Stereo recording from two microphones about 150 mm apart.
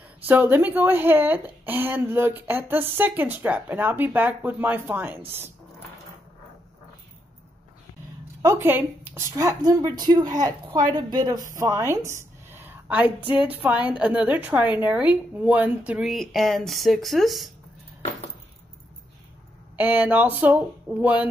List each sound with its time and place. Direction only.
0.3 s speech: 15° right (ahead or behind)
8.4 s a woman's voice: 20° right (ahead or behind); by 17.5 s centre (ahead or behind)
19.8 s speech: 10° right (ahead or behind)